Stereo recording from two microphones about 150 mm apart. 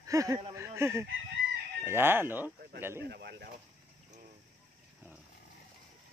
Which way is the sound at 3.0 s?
90° right.